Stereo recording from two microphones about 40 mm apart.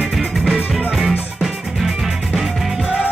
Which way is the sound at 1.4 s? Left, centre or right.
Centre.